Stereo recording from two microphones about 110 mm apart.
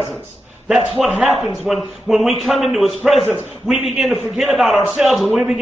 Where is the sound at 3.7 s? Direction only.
5° right (ahead or behind).